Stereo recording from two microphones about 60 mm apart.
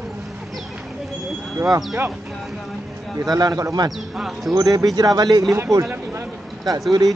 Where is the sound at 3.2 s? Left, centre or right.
Right.